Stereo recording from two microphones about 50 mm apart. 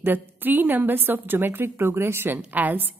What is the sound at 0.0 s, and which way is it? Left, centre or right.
A woman's voice, right.